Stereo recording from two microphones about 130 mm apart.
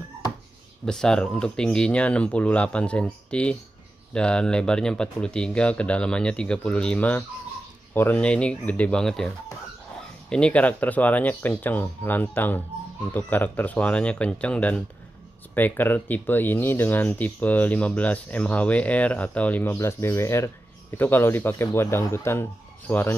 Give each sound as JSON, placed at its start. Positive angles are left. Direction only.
{"t": 0.8, "sound": "speech", "side_deg": 5}
{"t": 10.3, "sound": "speech", "side_deg": 10}